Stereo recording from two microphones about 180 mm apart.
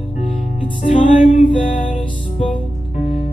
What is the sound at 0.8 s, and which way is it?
Music, 45° left (ahead or behind).